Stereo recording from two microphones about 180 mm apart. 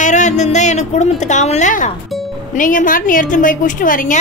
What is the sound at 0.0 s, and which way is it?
A woman's voice, 45° left (ahead or behind).